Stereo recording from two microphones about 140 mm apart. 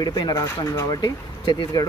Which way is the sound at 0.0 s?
30° left (ahead or behind).